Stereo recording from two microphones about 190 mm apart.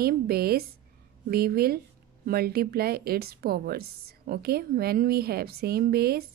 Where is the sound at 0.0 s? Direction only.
55° right (ahead or behind).